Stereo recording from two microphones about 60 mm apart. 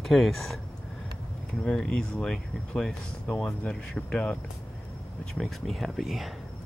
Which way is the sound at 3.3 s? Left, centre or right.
Left.